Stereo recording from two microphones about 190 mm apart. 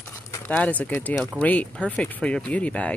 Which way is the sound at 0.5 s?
5° left (ahead or behind).